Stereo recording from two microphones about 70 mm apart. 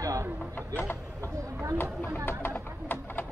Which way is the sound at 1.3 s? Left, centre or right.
Right.